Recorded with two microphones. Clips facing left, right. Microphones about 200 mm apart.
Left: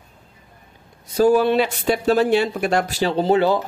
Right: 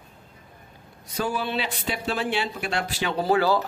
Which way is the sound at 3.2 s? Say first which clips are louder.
Left 4 dB; 25° left (ahead or behind).